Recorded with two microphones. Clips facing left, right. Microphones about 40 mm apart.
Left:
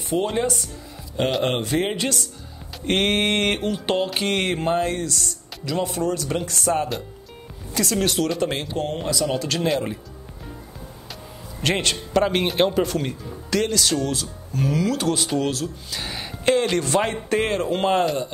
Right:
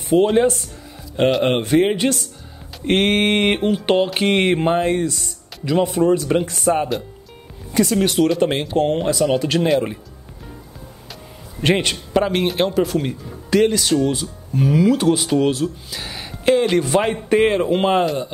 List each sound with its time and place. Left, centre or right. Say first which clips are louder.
0.1 s speech: right 8 dB; centre
1.8 s speech: right 7 dB; centre
8.4 s speech: right 7 dB; right
11.7 s a man's voice: right 3 dB; centre
12.3 s speech: right 1 dB; centre
16.0 s a man's voice: left 1 dB; centre